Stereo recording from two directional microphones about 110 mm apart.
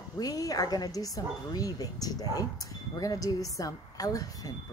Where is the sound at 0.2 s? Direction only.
35° left (ahead or behind).